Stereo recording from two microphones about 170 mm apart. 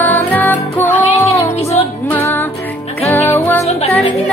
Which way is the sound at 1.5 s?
40° left (ahead or behind).